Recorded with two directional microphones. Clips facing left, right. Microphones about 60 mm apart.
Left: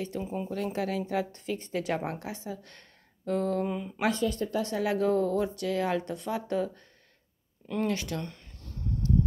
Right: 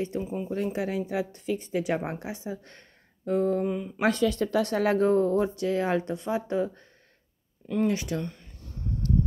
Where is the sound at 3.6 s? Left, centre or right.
Centre.